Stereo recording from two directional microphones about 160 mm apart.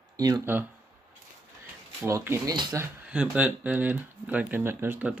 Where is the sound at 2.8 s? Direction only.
10° right (ahead or behind).